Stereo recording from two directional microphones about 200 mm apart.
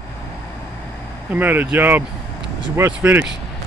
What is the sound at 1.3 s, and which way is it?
Speech, 10° right (ahead or behind).